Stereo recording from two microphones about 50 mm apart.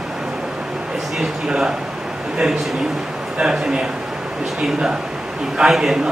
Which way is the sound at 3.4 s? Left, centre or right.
Centre.